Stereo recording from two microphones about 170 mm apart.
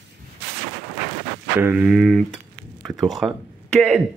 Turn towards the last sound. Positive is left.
turn(degrees=-5)  # may be behind; listen again after turning